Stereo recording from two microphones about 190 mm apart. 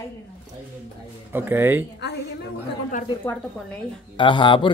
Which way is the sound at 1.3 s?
10° right (ahead or behind).